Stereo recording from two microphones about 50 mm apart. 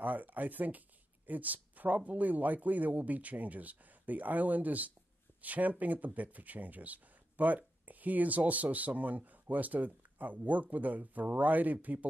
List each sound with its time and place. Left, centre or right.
0.0 s speech: right